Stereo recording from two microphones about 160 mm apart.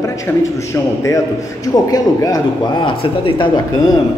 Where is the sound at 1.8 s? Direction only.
20° left (ahead or behind).